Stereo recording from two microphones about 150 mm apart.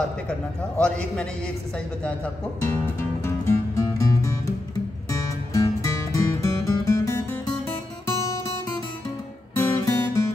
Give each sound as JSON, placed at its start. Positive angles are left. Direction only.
{"t": 0.7, "sound": "a man's voice", "side_deg": 5}
{"t": 2.0, "sound": "music", "side_deg": 15}
{"t": 9.6, "sound": "music", "side_deg": 15}